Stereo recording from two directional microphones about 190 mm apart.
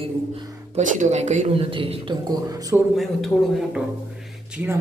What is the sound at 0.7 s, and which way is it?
A man's voice, 40° right (ahead or behind).